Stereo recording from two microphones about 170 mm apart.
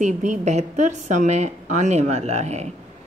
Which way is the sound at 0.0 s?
45° right (ahead or behind).